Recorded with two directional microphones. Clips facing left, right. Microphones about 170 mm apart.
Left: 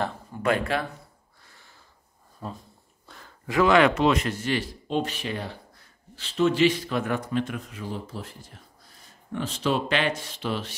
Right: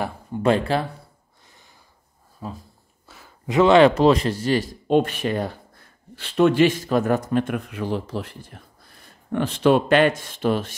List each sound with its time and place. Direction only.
0.3 s speech: 30° right (ahead or behind)
2.4 s speech: 5° right (ahead or behind)
3.1 s a sound: 5° right (ahead or behind)
3.4 s speech: 25° right (ahead or behind)
4.8 s speech: 55° right (ahead or behind)